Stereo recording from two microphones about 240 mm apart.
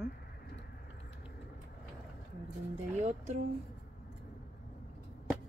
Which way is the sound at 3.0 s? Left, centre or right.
Right.